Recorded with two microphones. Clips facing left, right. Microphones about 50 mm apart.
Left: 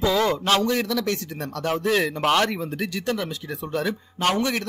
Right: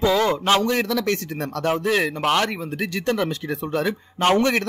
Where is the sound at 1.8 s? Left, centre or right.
Right.